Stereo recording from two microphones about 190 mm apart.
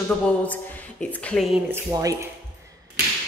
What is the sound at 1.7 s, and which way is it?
Speech, 15° right (ahead or behind).